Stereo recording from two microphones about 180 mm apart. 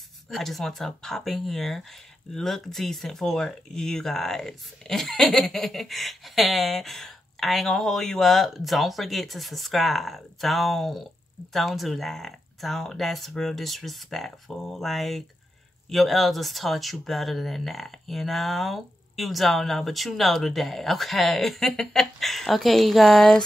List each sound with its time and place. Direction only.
0.3 s speech: centre (ahead or behind)